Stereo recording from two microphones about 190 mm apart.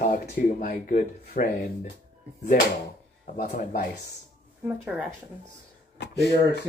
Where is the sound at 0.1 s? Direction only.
45° left (ahead or behind).